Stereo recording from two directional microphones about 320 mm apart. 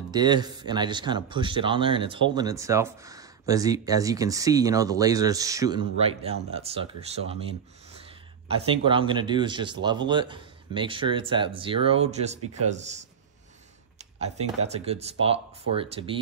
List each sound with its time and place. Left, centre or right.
0.1 s speech: centre
8.6 s speech: centre
14.9 s speech: centre